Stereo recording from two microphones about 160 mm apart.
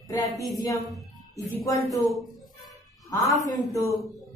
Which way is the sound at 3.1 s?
20° left (ahead or behind).